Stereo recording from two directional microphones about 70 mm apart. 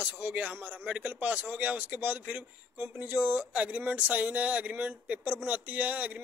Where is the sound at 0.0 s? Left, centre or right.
Right.